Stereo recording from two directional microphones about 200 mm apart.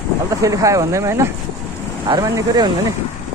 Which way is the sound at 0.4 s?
15° right (ahead or behind).